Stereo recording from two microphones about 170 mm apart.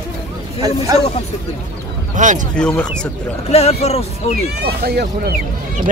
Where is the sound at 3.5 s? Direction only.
40° left (ahead or behind).